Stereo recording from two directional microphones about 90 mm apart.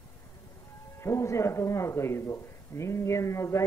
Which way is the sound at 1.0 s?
35° left (ahead or behind).